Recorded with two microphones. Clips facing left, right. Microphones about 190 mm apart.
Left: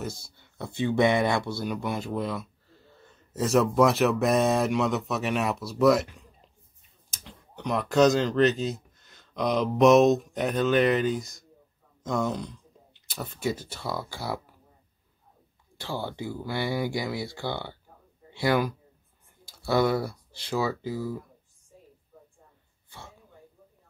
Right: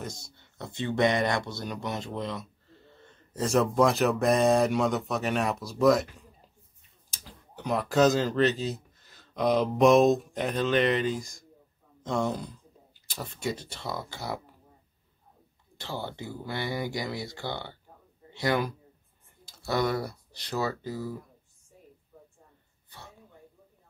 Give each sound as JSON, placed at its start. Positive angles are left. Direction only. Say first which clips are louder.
{"t": 0.0, "sound": "speech", "louder": "left 4 dB", "side_deg": 5}
{"t": 7.1, "sound": "speech", "louder": "left 2 dB", "side_deg": 0}
{"t": 15.9, "sound": "speech", "louder": "left 3 dB", "side_deg": 10}
{"t": 16.9, "sound": "speech", "louder": "left 3 dB", "side_deg": -20}
{"t": 18.4, "sound": "speech", "louder": "left 3 dB", "side_deg": 10}
{"t": 19.8, "sound": "speech", "louder": "left 3 dB", "side_deg": 5}